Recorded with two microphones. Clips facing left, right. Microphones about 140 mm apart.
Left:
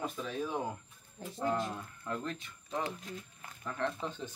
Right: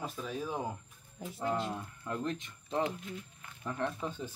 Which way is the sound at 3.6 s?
15° right (ahead or behind).